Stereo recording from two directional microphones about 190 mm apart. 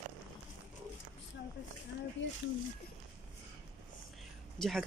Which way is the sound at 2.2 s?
75° left (ahead or behind).